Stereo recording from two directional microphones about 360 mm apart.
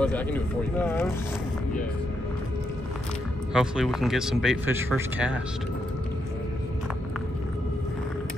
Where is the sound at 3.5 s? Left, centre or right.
Centre.